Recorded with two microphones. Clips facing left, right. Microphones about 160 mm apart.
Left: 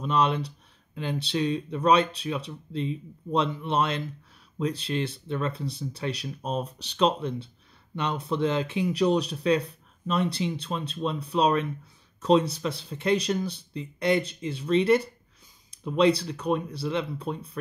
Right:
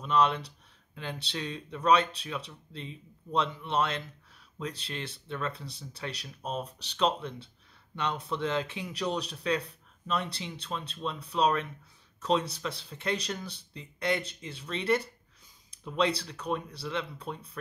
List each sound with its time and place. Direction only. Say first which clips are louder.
0.0 s speech: left 2 dB; 20° left (ahead or behind)